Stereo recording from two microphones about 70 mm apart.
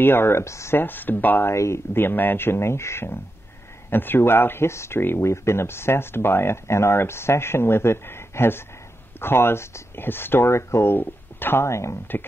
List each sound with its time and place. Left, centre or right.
0.0 s speech: left
0.7 s speech: left
1.5 s speech: left